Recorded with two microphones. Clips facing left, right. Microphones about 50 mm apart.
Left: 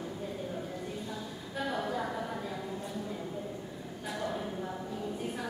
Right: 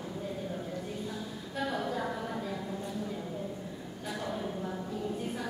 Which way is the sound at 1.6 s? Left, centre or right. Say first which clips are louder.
Right 1 dB; centre.